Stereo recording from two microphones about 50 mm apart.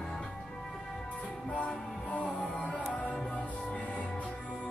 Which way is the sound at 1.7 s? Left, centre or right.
Centre.